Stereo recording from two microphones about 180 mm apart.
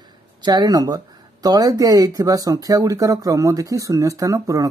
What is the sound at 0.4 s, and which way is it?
Speech, 20° right (ahead or behind).